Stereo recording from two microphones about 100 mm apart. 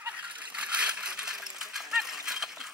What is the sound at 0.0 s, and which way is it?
Coin, 15° right (ahead or behind).